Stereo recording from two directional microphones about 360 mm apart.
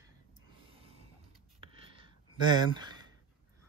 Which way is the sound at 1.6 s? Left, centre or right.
Centre.